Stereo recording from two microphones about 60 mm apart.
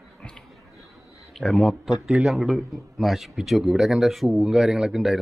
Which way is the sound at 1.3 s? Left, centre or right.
Centre.